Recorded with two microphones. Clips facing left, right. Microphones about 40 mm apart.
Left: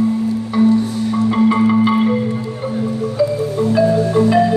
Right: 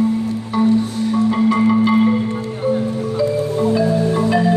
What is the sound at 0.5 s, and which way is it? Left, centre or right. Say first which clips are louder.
Music: left 3 dB; centre.